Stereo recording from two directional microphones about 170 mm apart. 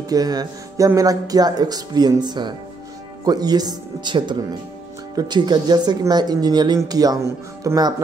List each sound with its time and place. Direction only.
0.1 s speech: 20° right (ahead or behind)